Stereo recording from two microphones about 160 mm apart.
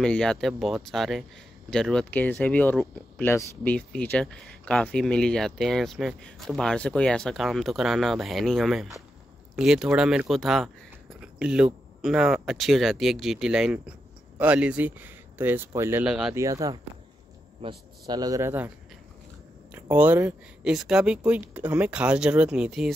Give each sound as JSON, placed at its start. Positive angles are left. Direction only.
{"t": 0.0, "sound": "speech", "side_deg": 5}
{"t": 16.1, "sound": "speech", "side_deg": -5}
{"t": 16.3, "sound": "speech", "side_deg": -20}
{"t": 19.7, "sound": "speech", "side_deg": -10}